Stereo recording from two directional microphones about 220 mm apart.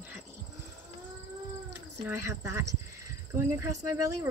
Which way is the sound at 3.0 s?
15° right (ahead or behind).